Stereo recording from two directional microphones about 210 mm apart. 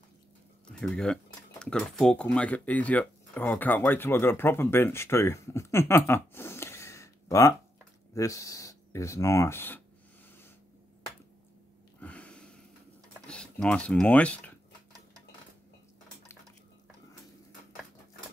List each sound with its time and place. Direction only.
0.7 s speech: 5° left (ahead or behind)
12.0 s sniff: 5° left (ahead or behind)
13.3 s speech: 5° left (ahead or behind)